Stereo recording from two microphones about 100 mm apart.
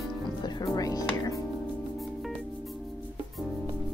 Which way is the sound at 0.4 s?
40° left (ahead or behind).